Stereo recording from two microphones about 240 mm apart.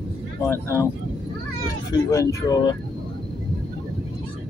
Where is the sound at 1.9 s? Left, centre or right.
Centre.